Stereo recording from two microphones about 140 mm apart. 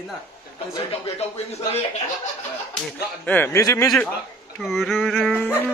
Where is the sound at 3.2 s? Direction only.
15° left (ahead or behind).